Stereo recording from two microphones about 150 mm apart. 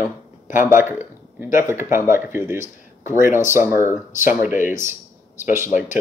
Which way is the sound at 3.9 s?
60° left (ahead or behind).